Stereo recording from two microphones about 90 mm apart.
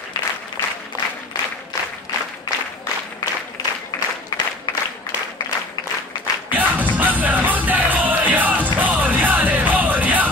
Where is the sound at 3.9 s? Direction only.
50° left (ahead or behind).